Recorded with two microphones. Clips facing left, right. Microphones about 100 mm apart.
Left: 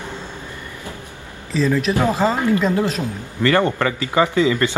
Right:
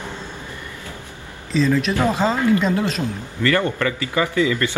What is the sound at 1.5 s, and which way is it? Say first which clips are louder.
Speech: even; 5° left (ahead or behind).